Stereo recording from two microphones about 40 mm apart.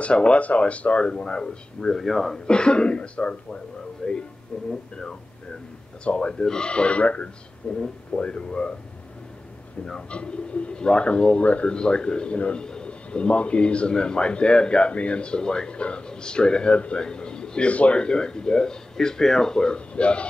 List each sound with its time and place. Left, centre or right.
0.0 s a man's voice: left
2.0 s speech: centre
2.4 s a man's voice: left
4.0 s speech: centre
6.0 s a man's voice: left
6.4 s speech: centre
6.7 s speech: left
7.6 s a man's voice: left
9.9 s a man's voice: left
11.7 s a man's voice: left
17.6 s a man's voice: left